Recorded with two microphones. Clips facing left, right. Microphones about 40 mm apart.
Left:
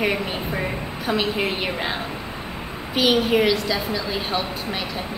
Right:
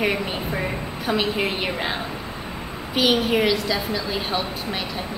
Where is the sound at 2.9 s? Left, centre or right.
Centre.